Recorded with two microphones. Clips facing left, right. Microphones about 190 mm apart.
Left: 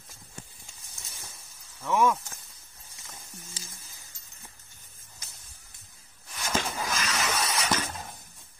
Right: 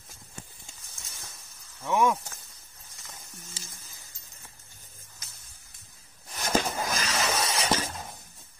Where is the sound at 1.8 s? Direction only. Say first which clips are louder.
Even; 10° right (ahead or behind).